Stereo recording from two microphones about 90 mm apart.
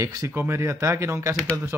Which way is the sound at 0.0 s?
35° right (ahead or behind).